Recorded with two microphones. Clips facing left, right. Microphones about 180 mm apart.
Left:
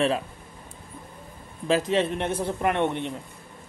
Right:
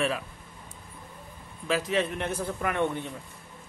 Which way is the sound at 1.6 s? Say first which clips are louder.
Left 4 dB; 30° left (ahead or behind).